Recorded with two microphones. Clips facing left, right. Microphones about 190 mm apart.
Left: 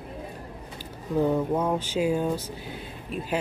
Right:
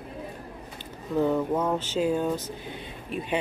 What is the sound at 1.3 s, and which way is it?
Speech, 10° left (ahead or behind).